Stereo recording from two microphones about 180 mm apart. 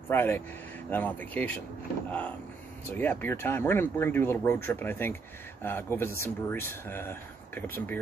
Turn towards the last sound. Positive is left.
turn(degrees=10)  # may be behind; listen again after turning